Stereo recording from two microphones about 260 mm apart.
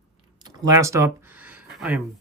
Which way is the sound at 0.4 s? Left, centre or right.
Centre.